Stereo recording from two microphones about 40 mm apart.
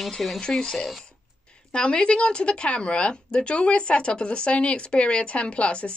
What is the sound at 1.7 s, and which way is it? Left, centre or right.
A woman's voice, left.